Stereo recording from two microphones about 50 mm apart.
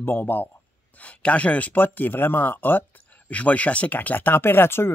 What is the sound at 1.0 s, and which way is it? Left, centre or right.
Speech, left.